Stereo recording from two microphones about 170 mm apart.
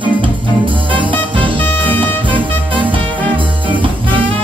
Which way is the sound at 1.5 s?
10° left (ahead or behind).